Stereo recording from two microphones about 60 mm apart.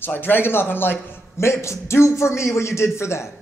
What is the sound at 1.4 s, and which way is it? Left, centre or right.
A man's voice, left.